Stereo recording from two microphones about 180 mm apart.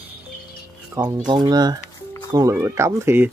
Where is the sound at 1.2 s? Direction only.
25° right (ahead or behind).